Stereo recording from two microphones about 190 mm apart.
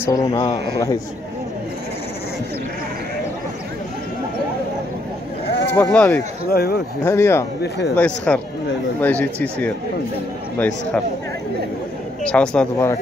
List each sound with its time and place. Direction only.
0.0 s speech: 20° left (ahead or behind)
5.8 s speech: 5° left (ahead or behind)
6.5 s speech: 55° left (ahead or behind)
7.0 s speech: 15° left (ahead or behind)
12.2 s a woman's voice: 5° left (ahead or behind)